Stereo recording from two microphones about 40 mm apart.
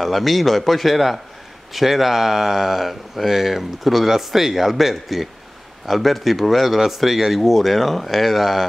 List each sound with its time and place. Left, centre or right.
0.0 s speech: centre